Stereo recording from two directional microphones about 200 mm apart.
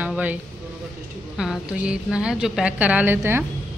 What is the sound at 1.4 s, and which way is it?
A woman's voice, 5° right (ahead or behind).